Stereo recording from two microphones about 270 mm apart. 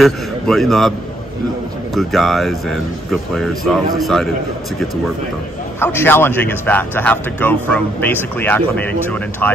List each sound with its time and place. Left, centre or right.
0.0 s speech: centre
2.0 s speech: centre
5.8 s a man's voice: centre